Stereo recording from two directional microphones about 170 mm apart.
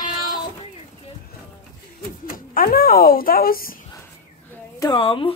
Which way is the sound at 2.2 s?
60° left (ahead or behind).